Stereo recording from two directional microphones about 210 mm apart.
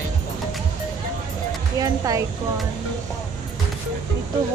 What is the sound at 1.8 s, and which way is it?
Speech, 15° right (ahead or behind).